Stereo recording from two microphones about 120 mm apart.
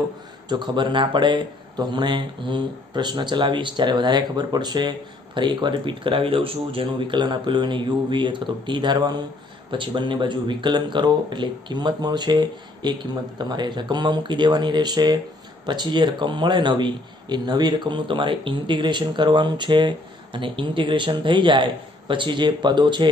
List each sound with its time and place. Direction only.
0.5 s a man's voice: 40° right (ahead or behind)